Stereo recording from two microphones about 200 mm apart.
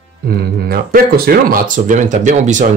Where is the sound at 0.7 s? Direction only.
50° right (ahead or behind).